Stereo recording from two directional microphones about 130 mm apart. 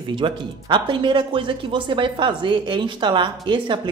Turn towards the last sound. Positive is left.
turn(degrees=-40)  # may be behind; listen again after turning